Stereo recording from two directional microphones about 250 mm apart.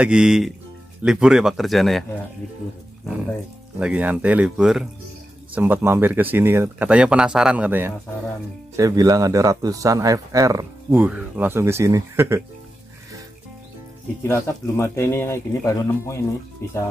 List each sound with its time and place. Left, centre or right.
0.0 s speech: centre
3.8 s speech: centre
14.2 s speech: centre